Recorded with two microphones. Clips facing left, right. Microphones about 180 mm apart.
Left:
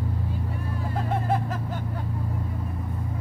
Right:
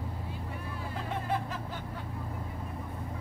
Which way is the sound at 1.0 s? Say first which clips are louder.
Left 7 dB; 45° left (ahead or behind).